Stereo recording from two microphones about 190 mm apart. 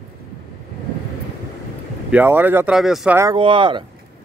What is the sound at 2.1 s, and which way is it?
Speech, 10° right (ahead or behind).